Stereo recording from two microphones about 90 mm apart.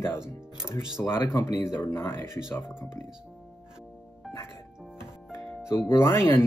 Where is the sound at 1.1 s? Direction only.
30° left (ahead or behind).